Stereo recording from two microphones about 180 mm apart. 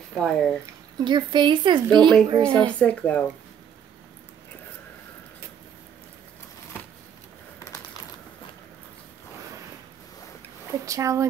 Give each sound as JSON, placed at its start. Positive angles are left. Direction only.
{"t": 0.1, "sound": "speech", "side_deg": 5}
{"t": 1.0, "sound": "speech", "side_deg": -25}
{"t": 2.6, "sound": "speech", "side_deg": 5}
{"t": 10.9, "sound": "speech", "side_deg": -15}